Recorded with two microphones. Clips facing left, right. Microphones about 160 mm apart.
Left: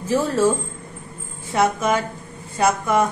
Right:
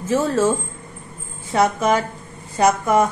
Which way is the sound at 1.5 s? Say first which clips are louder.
Right 2 dB; 30° right (ahead or behind).